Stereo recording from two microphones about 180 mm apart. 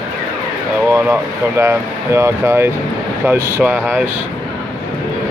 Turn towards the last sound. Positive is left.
turn(degrees=-15)  # may be behind; listen again after turning